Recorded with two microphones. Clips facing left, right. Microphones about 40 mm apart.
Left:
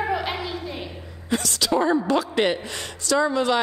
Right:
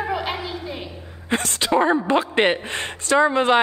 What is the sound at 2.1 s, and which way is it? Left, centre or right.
A woman's voice, right.